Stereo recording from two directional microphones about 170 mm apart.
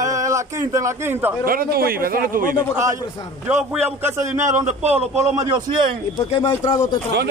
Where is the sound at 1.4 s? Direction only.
60° right (ahead or behind).